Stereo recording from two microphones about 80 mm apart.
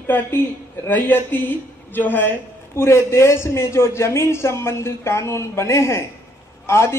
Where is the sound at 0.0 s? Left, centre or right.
Left.